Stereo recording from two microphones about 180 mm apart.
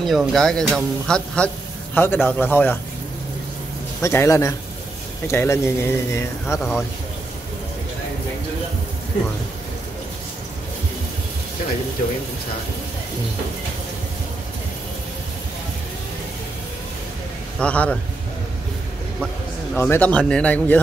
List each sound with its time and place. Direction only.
0.0 s speech: centre (ahead or behind)
4.0 s speech: 15° left (ahead or behind)
17.6 s speech: 5° left (ahead or behind)
19.7 s speech: 10° left (ahead or behind)